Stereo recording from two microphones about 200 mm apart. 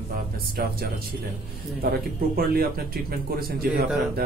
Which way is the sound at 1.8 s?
50° right (ahead or behind).